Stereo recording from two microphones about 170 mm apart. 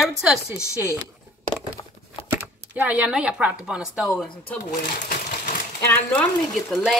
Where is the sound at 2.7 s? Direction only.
5° right (ahead or behind).